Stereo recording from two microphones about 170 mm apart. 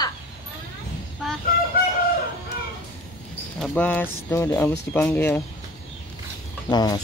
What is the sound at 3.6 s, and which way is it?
Speech, 10° left (ahead or behind).